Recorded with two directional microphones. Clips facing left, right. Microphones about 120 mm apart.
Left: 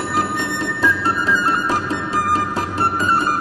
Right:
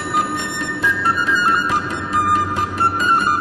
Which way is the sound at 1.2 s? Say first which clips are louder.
Even; 35° left (ahead or behind).